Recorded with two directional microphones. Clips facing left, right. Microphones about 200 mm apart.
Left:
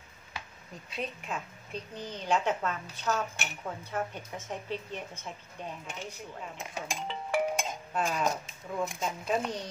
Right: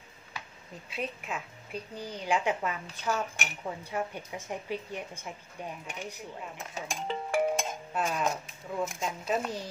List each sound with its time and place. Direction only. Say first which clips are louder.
0.8 s a woman's voice: right 1 dB; 5° right (ahead or behind)
6.6 s dishes: left 1 dB; 10° left (ahead or behind)
7.1 s music: right 2 dB; 45° right (ahead or behind)
7.9 s speech: left 1 dB; centre (ahead or behind)